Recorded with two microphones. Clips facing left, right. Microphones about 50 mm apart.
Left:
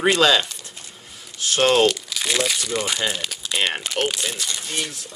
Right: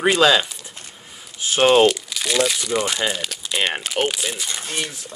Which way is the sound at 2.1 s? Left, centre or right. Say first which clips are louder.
Right 2 dB; centre.